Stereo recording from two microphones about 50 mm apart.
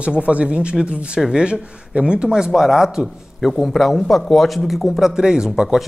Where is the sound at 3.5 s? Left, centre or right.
Centre.